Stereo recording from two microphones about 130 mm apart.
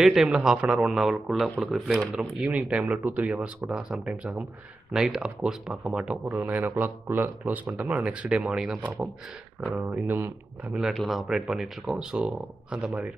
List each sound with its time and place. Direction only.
0.0 s speech: 5° right (ahead or behind)